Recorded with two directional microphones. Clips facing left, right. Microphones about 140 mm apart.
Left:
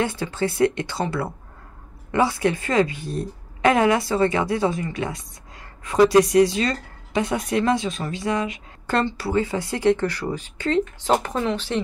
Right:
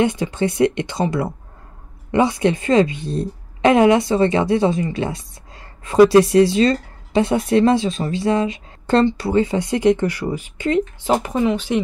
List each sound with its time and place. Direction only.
0.0 s speech: 20° right (ahead or behind)